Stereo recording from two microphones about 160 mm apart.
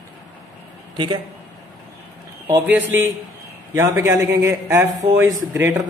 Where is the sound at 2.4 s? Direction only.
10° right (ahead or behind).